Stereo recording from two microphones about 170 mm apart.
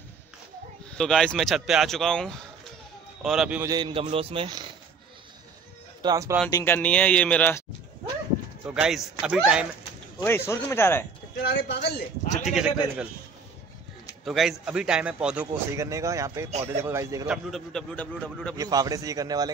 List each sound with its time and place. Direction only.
0.9 s a man's voice: 5° left (ahead or behind)
3.6 s a man's voice: 25° right (ahead or behind)
6.0 s speech: 20° right (ahead or behind)
6.5 s a man's voice: 10° left (ahead or behind)
8.6 s a man's voice: 5° right (ahead or behind)
10.2 s a man's voice: 15° left (ahead or behind)
11.4 s speech: 75° left (ahead or behind)
12.4 s a man's voice: 5° right (ahead or behind)
14.2 s a man's voice: centre (ahead or behind)
15.8 s speech: 20° right (ahead or behind)
17.3 s a man's voice: centre (ahead or behind)
18.6 s a man's voice: 20° right (ahead or behind)